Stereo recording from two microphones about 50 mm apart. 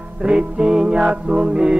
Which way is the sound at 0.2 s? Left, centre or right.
Centre.